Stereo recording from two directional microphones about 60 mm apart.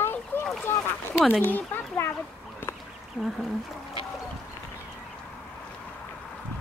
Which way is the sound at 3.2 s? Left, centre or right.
Centre.